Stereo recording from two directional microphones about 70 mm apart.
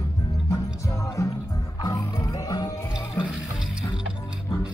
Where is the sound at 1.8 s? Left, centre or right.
Left.